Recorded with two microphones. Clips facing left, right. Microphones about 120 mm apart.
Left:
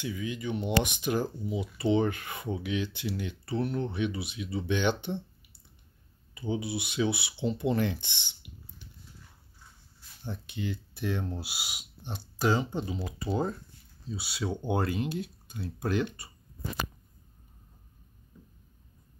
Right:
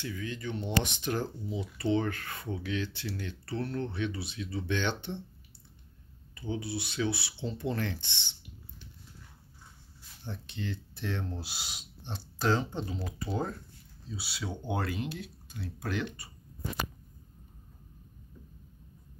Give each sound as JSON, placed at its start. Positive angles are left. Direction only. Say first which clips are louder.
{"t": 0.0, "sound": "speech", "louder": "left 3 dB", "side_deg": 15}
{"t": 6.3, "sound": "speech", "louder": "left 3 dB", "side_deg": 15}
{"t": 10.2, "sound": "speech", "louder": "left 3 dB", "side_deg": 10}
{"t": 15.8, "sound": "speech", "louder": "left 5 dB", "side_deg": 35}